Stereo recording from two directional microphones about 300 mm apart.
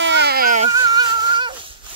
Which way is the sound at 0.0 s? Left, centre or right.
Right.